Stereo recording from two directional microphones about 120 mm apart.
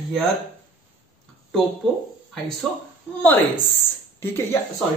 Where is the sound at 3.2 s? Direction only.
15° left (ahead or behind).